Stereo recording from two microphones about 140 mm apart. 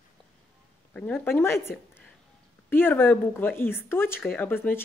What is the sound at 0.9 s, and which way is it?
Speech, 10° left (ahead or behind).